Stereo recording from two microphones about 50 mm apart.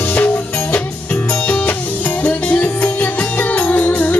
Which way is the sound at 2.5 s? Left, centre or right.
Left.